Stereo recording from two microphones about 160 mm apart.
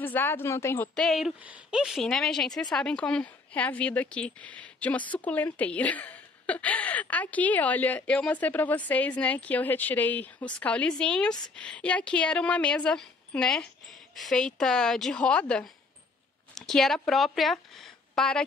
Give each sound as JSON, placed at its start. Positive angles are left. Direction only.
{"t": 0.0, "sound": "speech", "side_deg": 10}
{"t": 0.9, "sound": "a woman's voice", "side_deg": 0}